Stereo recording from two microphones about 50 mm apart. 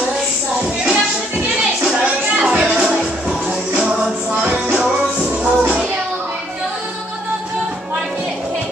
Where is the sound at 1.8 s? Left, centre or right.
Right.